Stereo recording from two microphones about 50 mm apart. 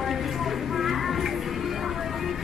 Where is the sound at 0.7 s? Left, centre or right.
Centre.